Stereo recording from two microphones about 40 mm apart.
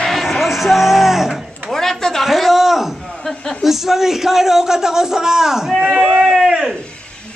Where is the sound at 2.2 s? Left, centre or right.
Centre.